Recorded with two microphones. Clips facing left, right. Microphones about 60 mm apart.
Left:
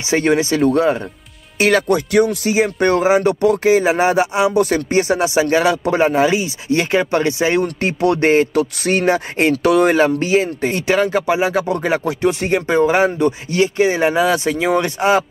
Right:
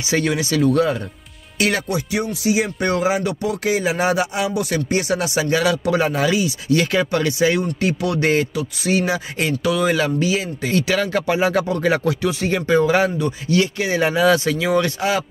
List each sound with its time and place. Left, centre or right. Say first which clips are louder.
0.0 s speech: left 5 dB; left
1.7 s speech: left 10 dB; left
2.5 s speech: left 4 dB; left
4.6 s speech: left 6 dB; left
8.5 s speech: left 4 dB; left
9.9 s speech: left 5 dB; left
10.7 s speech: left 1 dB; left
11.1 s speech: left 2 dB; centre
12.2 s speech: left 4 dB; left
12.5 s speech: left 1 dB; left